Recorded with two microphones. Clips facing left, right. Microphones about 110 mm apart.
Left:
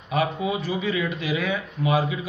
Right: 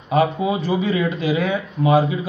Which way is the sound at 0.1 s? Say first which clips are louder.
Right 6 dB; 30° right (ahead or behind).